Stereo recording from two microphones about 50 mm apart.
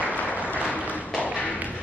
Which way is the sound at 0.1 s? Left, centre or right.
Left.